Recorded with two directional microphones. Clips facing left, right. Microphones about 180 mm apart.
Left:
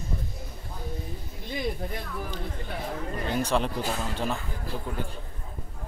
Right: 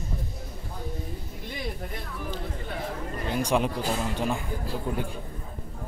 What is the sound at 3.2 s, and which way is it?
Speech, 10° right (ahead or behind).